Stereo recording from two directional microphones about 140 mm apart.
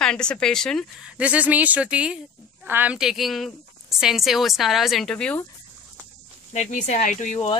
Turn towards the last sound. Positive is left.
turn(degrees=60)  # may be behind; listen again after turning